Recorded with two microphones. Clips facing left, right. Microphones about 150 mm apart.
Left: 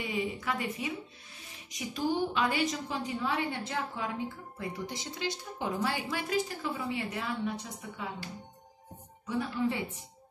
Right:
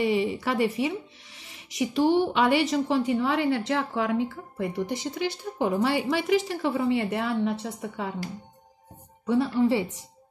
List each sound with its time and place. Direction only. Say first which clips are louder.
0.0 s speech: right 9 dB; 70° right (ahead or behind)
9.2 s speech: right 9 dB; 70° right (ahead or behind)